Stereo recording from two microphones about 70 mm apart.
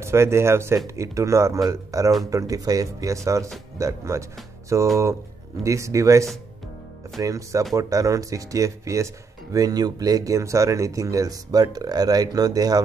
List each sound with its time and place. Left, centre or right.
0.0 s speech: right